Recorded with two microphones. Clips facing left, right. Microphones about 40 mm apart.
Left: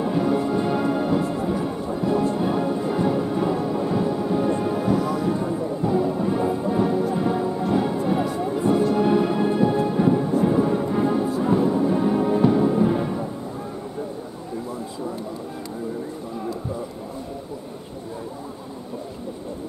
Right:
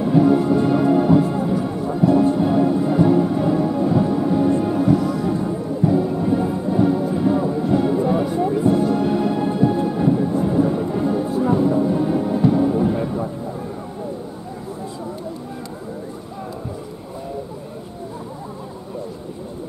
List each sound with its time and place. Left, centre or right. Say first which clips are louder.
0.0 s music: right 6 dB; centre